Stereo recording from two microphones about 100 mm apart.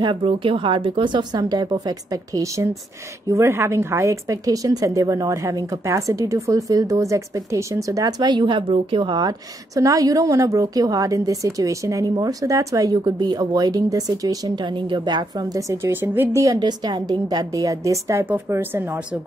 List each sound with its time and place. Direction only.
0.0 s a woman's voice: 60° right (ahead or behind); by 12.9 s 35° right (ahead or behind)
12.9 s a woman's voice: 45° right (ahead or behind); by 16.4 s 20° right (ahead or behind)
16.4 s a woman's voice: 40° right (ahead or behind)
18.2 s speech: 20° right (ahead or behind)